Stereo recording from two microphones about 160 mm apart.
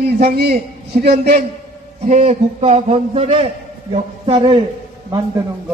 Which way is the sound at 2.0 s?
45° right (ahead or behind).